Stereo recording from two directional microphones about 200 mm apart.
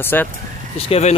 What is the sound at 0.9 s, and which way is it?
Speech, 35° left (ahead or behind).